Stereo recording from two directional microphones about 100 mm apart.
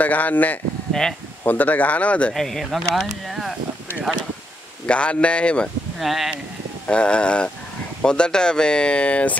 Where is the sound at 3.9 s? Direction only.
20° left (ahead or behind).